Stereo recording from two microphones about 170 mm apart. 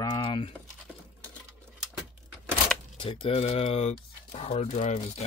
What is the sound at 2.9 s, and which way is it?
Speech, 30° left (ahead or behind).